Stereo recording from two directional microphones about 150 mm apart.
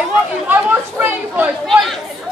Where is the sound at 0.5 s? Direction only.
10° right (ahead or behind).